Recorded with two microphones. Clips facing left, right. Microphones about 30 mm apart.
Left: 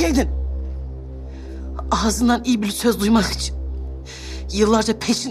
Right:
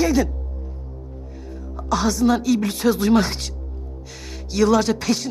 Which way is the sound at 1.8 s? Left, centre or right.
Centre.